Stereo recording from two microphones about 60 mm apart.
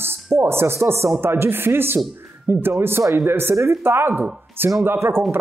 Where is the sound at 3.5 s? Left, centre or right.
Right.